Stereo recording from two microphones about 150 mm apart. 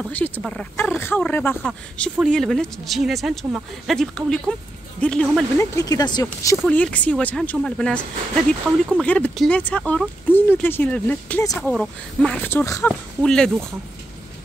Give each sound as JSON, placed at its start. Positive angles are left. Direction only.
{"t": 0.4, "sound": "speech", "side_deg": 5}
{"t": 1.6, "sound": "speech", "side_deg": 0}
{"t": 5.6, "sound": "speech", "side_deg": 25}
{"t": 6.7, "sound": "speech", "side_deg": 10}
{"t": 12.4, "sound": "speech", "side_deg": 15}
{"t": 13.2, "sound": "speech", "side_deg": 5}